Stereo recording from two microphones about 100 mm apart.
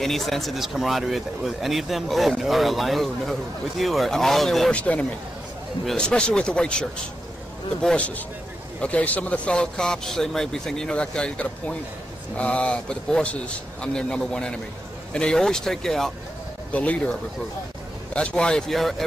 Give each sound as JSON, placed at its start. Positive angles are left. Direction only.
{"t": 0.0, "sound": "speech", "side_deg": 0}
{"t": 18.1, "sound": "speech", "side_deg": 10}